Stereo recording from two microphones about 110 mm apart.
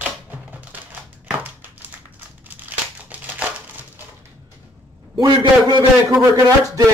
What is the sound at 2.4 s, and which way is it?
Crumpling, 15° right (ahead or behind).